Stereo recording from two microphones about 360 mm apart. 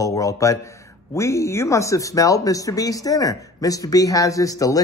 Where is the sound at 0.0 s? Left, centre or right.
Centre.